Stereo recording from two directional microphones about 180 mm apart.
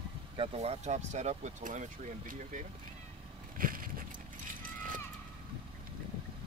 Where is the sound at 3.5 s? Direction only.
50° right (ahead or behind).